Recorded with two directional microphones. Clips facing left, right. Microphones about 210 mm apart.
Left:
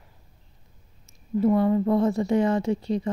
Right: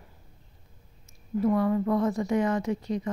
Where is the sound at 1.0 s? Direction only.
25° left (ahead or behind).